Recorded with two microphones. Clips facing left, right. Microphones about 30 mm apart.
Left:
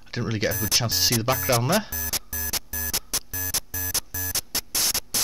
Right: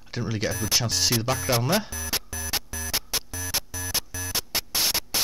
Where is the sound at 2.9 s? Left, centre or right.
Right.